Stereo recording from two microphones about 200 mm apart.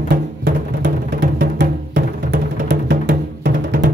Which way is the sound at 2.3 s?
50° right (ahead or behind).